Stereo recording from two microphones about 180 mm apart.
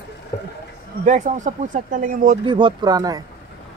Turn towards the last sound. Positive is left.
turn(degrees=-20)  # may be behind; listen again after turning